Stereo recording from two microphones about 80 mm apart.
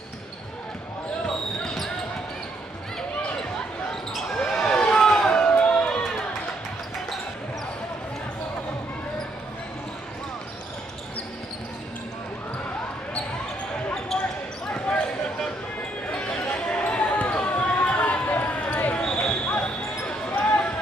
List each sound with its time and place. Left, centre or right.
1.2 s basketball bounce: centre
3.9 s basketball bounce: centre
14.1 s basketball bounce: centre
14.7 s basketball bounce: centre